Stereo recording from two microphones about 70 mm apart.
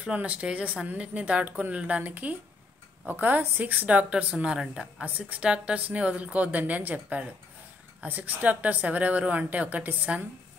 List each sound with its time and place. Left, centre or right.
0.0 s speech: centre